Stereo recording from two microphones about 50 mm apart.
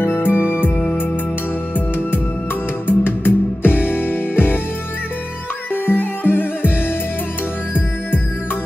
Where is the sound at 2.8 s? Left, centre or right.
Left.